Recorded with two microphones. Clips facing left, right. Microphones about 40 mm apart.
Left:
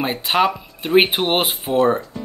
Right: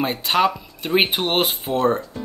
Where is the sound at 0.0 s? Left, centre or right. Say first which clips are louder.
Left 1 dB; centre.